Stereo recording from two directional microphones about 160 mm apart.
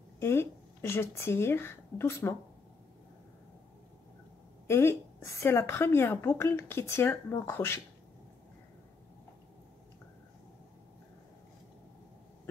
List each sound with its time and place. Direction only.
0.2 s speech: 15° left (ahead or behind)
4.6 s speech: 15° left (ahead or behind)